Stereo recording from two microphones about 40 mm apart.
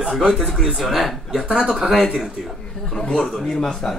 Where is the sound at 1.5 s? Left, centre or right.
Centre.